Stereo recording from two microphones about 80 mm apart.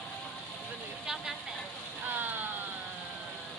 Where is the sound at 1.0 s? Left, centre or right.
Centre.